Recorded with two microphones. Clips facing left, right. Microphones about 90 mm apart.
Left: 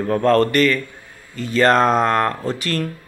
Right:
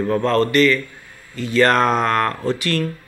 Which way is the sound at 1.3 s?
40° left (ahead or behind).